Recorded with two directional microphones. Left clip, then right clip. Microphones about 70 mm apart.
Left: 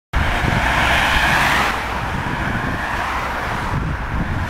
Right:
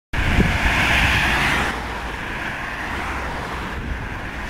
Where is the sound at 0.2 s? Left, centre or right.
Centre.